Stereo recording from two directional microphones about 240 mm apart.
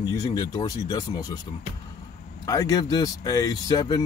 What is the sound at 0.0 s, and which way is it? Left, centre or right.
Speech, centre.